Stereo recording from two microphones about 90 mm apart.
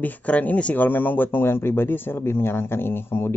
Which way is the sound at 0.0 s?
15° left (ahead or behind).